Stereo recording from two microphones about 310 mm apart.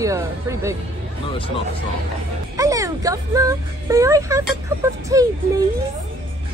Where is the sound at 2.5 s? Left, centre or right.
Centre.